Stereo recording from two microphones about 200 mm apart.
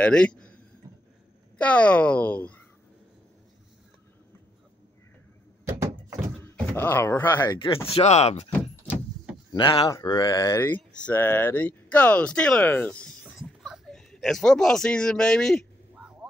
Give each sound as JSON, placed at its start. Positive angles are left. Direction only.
{"t": 0.0, "sound": "a man's voice", "side_deg": 5}
{"t": 1.6, "sound": "speech", "side_deg": 5}
{"t": 5.7, "sound": "door", "side_deg": -15}
{"t": 6.4, "sound": "speech", "side_deg": 10}
{"t": 7.5, "sound": "speech", "side_deg": 25}
{"t": 8.5, "sound": "door", "side_deg": 10}
{"t": 9.5, "sound": "speech", "side_deg": 20}